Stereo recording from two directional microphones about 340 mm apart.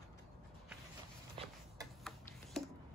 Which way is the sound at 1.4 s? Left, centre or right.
Centre.